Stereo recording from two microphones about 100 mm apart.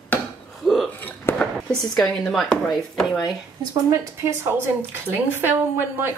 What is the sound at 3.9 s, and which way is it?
A woman's voice, 25° right (ahead or behind).